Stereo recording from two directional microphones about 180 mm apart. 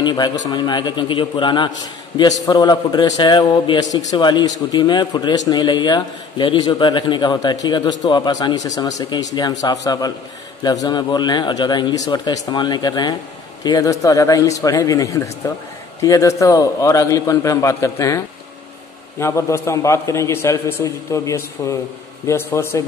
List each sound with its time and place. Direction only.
0.0 s a man's voice: 25° left (ahead or behind)